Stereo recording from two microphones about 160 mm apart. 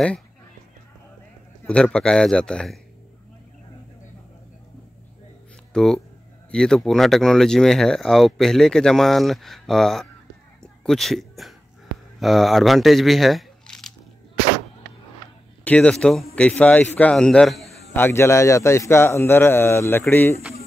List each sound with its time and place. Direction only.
1.7 s speech: 5° left (ahead or behind)
5.7 s speech: centre (ahead or behind)
10.6 s a sound: 5° left (ahead or behind)
12.2 s speech: centre (ahead or behind)
15.6 s speech: 10° left (ahead or behind)
17.9 s a man's voice: 15° left (ahead or behind)